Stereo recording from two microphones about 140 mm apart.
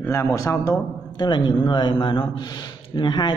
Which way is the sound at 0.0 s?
15° left (ahead or behind).